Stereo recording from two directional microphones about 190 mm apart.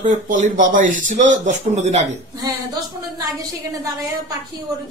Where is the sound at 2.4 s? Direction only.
20° right (ahead or behind).